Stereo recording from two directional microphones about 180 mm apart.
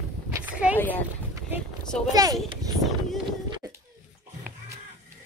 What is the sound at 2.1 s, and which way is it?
Speech, 20° right (ahead or behind).